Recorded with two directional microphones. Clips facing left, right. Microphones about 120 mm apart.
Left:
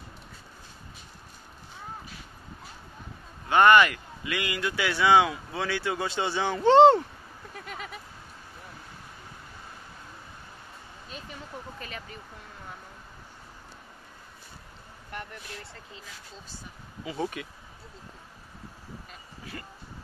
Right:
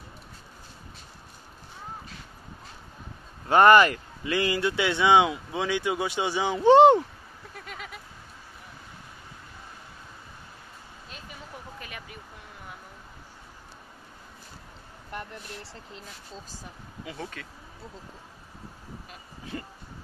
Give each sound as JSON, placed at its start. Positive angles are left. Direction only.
{"t": 3.4, "sound": "speech", "side_deg": -40}
{"t": 7.5, "sound": "a sound", "side_deg": 0}
{"t": 11.8, "sound": "vehicle", "side_deg": -10}
{"t": 17.2, "sound": "speech", "side_deg": 15}
{"t": 19.5, "sound": "speech", "side_deg": -20}